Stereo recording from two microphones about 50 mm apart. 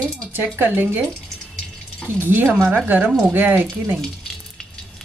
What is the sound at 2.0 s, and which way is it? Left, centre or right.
Speech, right.